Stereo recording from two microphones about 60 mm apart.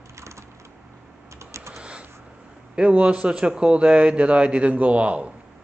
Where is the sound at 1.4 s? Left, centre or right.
Right.